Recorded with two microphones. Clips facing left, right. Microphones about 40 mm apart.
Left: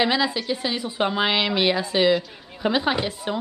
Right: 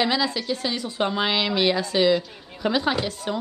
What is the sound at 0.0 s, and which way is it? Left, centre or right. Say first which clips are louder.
Speech: left 1 dB; centre.